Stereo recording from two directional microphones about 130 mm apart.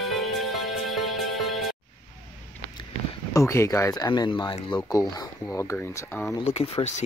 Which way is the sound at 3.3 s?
20° left (ahead or behind).